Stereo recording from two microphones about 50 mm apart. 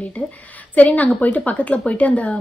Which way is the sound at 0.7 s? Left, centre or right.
Left.